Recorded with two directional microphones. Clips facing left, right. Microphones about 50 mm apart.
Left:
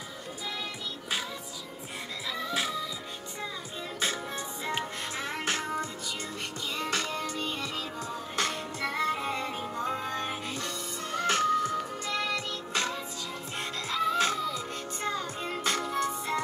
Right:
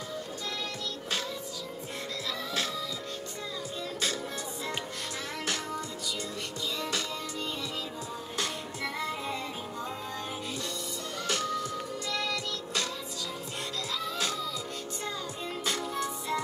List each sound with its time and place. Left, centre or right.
2.2 s music: centre
4.6 s music: left